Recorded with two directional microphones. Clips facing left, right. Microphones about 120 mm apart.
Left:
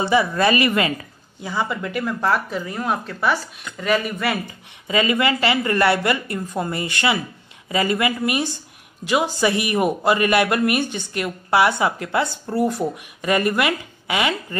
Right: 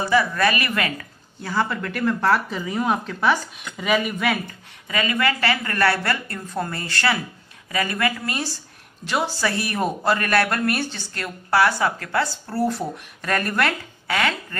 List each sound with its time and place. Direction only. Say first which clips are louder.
0.0 s a woman's voice: left 2 dB; 20° left (ahead or behind); by 4.4 s centre (ahead or behind)
4.8 s a woman's voice: left 3 dB; 20° left (ahead or behind)